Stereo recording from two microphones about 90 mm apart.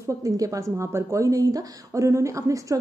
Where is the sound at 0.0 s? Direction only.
40° right (ahead or behind).